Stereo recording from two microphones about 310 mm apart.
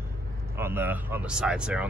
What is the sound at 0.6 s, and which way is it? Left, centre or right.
Speech, centre.